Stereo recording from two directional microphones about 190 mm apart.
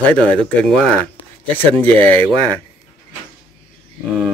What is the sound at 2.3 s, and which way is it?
Speech, 20° right (ahead or behind).